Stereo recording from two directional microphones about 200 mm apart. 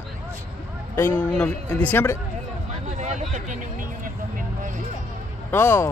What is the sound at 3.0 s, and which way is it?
Vehicle, 35° right (ahead or behind).